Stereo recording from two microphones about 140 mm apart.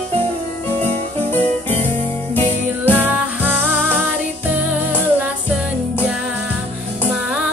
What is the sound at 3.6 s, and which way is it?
Music, 5° left (ahead or behind).